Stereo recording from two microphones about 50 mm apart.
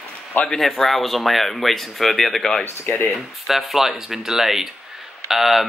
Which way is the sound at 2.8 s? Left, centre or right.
Left.